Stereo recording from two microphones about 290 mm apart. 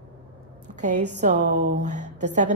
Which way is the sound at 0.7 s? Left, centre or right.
Right.